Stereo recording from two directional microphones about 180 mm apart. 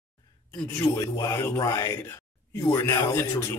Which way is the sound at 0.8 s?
20° left (ahead or behind).